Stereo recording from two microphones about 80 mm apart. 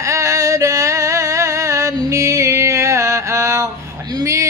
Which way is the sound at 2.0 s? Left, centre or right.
Right.